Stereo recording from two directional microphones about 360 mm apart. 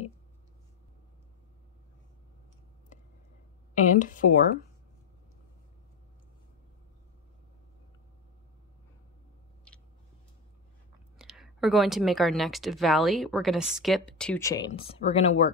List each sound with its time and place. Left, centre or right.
3.7 s speech: left
11.1 s a woman's voice: centre